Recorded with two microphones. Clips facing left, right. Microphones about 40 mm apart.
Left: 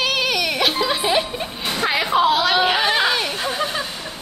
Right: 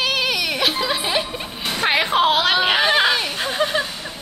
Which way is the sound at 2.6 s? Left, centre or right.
Right.